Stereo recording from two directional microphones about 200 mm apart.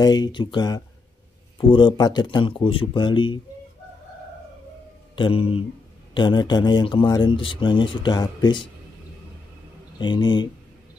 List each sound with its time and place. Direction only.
0.0 s speech: 20° left (ahead or behind)
5.1 s speech: 25° left (ahead or behind)
9.9 s speech: 20° left (ahead or behind)